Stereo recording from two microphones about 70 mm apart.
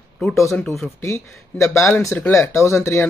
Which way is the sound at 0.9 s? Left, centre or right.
Left.